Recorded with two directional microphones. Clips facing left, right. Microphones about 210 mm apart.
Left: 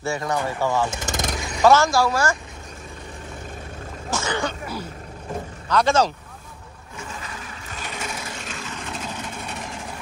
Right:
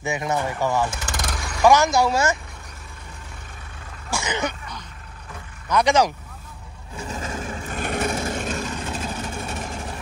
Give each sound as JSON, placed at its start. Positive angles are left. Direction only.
{"t": 0.0, "sound": "speech", "side_deg": -20}
{"t": 0.8, "sound": "speech", "side_deg": 20}
{"t": 1.6, "sound": "speech", "side_deg": -15}
{"t": 4.1, "sound": "speech", "side_deg": -15}
{"t": 5.7, "sound": "speech", "side_deg": -15}
{"t": 7.0, "sound": "a sound", "side_deg": -40}